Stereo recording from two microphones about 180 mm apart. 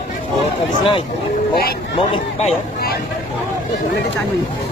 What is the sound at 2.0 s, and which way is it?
Speech, 35° left (ahead or behind).